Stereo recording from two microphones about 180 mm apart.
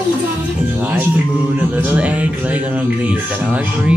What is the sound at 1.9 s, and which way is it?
Music, 10° right (ahead or behind).